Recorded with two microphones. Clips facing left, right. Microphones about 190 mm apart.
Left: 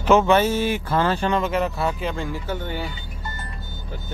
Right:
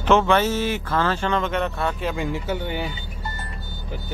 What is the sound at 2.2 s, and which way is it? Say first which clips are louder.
Speech: right 2 dB; 15° right (ahead or behind).